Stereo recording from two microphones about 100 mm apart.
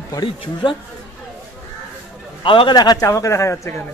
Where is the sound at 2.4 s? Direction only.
55° left (ahead or behind).